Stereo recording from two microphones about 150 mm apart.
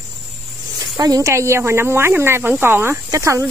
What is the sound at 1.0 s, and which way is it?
Speech, 20° right (ahead or behind).